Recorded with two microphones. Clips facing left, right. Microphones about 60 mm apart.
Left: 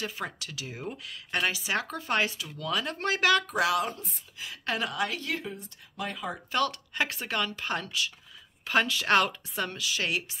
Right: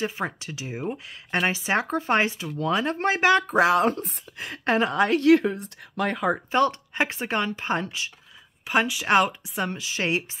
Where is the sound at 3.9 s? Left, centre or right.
Right.